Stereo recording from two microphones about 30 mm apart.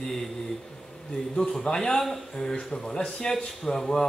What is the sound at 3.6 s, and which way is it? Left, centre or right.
Speech, centre.